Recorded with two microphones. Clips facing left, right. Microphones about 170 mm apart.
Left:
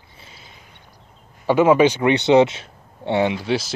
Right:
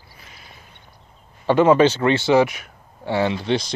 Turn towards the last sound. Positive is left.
turn(degrees=5)  # may be behind; listen again after turning